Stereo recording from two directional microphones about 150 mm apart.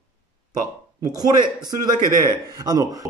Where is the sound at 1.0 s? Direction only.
25° right (ahead or behind).